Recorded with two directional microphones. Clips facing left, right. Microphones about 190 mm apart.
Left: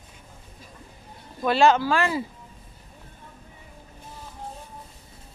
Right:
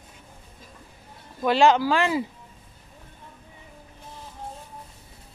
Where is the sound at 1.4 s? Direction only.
15° right (ahead or behind).